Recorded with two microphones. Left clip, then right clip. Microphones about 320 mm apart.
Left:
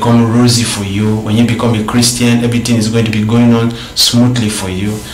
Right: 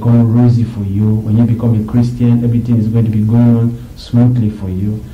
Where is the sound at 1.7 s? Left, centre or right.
Centre.